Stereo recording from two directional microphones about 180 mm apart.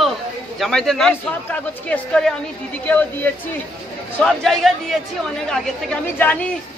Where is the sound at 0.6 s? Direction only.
Centre (ahead or behind).